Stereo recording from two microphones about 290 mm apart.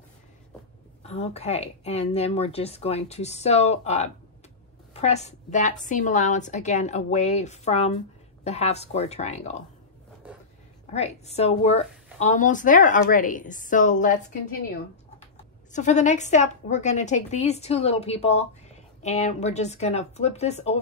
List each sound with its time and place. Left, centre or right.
1.0 s a woman's voice: left
10.9 s a woman's voice: left
15.7 s a woman's voice: left